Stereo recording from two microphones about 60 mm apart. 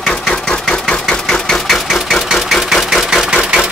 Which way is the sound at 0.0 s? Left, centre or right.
Centre.